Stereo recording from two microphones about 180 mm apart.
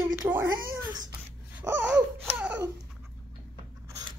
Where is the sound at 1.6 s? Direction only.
5° right (ahead or behind).